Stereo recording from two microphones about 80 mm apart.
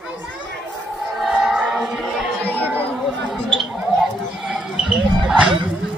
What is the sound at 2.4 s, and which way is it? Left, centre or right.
Chatter, left.